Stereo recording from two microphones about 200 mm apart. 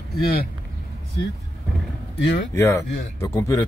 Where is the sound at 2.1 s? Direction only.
60° left (ahead or behind).